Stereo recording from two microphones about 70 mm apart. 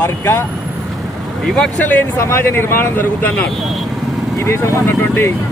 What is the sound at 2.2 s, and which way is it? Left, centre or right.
Speech, left.